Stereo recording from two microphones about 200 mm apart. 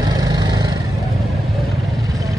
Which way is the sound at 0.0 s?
20° right (ahead or behind).